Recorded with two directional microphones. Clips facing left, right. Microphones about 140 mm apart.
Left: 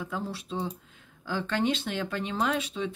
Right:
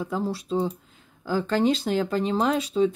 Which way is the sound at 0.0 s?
35° right (ahead or behind).